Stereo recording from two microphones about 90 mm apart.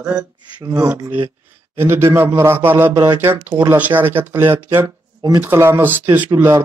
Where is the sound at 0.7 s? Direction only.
35° right (ahead or behind).